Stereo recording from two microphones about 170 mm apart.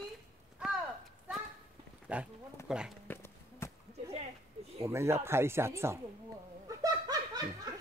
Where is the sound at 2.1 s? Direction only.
10° right (ahead or behind).